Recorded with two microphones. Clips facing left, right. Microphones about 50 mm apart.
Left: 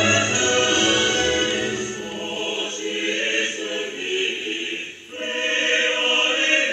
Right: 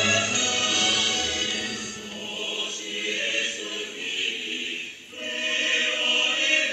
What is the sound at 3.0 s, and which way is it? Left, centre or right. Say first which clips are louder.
Chant: left 4 dB; left.